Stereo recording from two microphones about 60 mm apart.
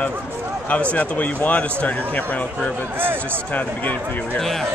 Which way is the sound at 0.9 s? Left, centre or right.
Left.